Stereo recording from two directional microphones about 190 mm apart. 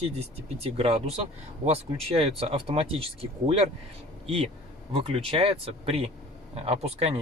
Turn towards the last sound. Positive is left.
turn(degrees=-35)  # may be behind; listen again after turning